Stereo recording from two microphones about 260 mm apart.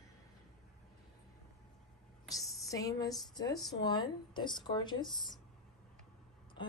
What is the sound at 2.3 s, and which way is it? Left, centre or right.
A woman's voice, centre.